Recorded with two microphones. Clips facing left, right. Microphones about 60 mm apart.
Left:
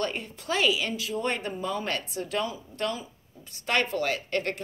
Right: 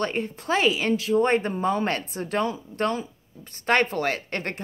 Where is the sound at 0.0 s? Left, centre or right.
Right.